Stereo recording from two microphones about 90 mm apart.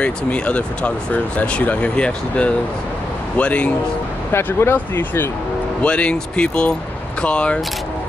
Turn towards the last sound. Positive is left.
turn(degrees=10)  # may be behind; listen again after turning